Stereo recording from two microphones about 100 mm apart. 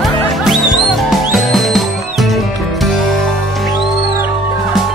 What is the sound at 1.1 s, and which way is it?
Music, centre (ahead or behind).